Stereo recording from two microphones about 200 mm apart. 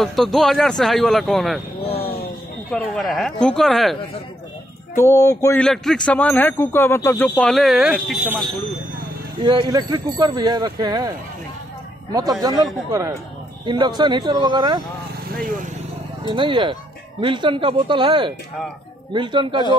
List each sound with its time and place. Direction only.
0.0 s speech: centre (ahead or behind)
1.9 s a sound: 30° left (ahead or behind)
2.7 s speech: centre (ahead or behind)
4.9 s music: 15° left (ahead or behind)
5.6 s speech: 5° left (ahead or behind)
9.4 s speech: 25° right (ahead or behind)
13.7 s speech: 20° right (ahead or behind)
16.3 s speech: 25° right (ahead or behind)